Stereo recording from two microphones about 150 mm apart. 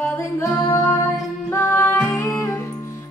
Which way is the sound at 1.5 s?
15° left (ahead or behind).